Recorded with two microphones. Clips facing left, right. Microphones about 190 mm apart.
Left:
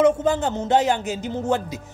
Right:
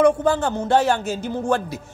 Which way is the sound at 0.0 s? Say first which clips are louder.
Right 1 dB; 20° left (ahead or behind).